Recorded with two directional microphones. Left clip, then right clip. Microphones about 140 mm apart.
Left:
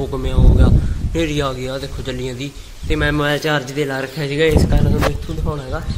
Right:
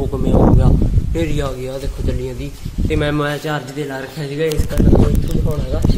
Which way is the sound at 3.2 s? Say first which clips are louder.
Left 4 dB; 20° left (ahead or behind).